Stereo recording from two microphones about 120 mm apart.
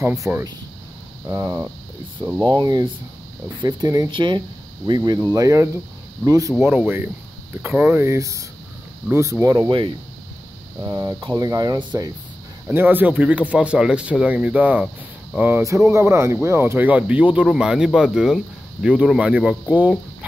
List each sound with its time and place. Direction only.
0.2 s speech: 25° right (ahead or behind)
2.5 s speech: 35° right (ahead or behind)
4.1 s speech: 40° right (ahead or behind)
6.6 s speech: 15° right (ahead or behind); by 12.1 s 35° right (ahead or behind)
12.6 s speech: 15° right (ahead or behind)